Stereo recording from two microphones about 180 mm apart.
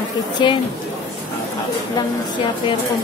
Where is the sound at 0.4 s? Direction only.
25° left (ahead or behind).